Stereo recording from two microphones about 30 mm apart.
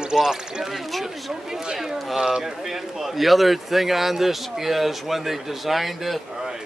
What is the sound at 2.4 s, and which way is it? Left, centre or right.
A man's voice, centre.